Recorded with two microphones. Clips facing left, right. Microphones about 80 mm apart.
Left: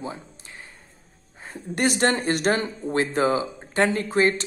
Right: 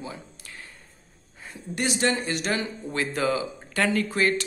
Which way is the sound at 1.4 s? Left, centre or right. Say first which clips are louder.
Left 5 dB; left.